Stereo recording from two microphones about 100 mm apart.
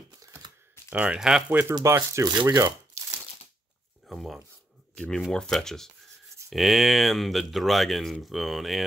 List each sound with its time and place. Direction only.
0.9 s speech: 10° right (ahead or behind)
1.5 s speech: 20° right (ahead or behind)
4.1 s speech: centre (ahead or behind)